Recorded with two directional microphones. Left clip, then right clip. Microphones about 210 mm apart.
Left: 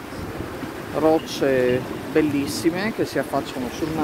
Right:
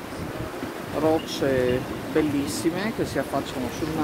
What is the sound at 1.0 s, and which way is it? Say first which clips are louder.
Speech: left 4 dB; 25° left (ahead or behind).